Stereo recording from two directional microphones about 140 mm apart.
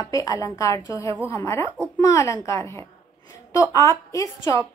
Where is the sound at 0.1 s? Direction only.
25° left (ahead or behind).